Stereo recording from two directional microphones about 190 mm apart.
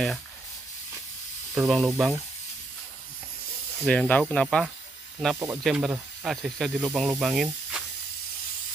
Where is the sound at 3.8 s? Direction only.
5° left (ahead or behind).